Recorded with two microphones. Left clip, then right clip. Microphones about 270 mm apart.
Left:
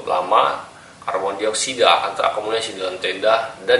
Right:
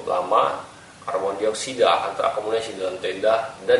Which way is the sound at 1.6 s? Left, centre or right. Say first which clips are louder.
Left 4 dB; centre.